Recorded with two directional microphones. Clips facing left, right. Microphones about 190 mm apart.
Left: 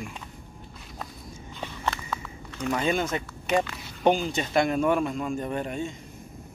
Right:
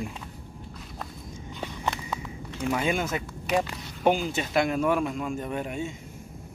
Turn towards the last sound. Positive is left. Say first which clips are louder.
# left 1 dB
turn(degrees=-5)  # may be behind; listen again after turning